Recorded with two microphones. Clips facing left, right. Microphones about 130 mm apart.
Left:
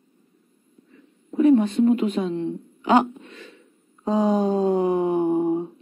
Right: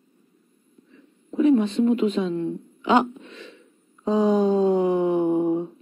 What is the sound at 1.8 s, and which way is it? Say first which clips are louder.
Speech: left 1 dB; 35° left (ahead or behind).